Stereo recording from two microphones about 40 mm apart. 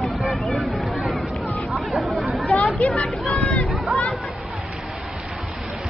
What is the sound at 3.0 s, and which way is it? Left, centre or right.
Speech, centre.